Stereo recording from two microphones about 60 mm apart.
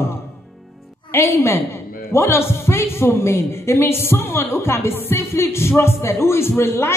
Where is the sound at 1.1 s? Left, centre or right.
Left.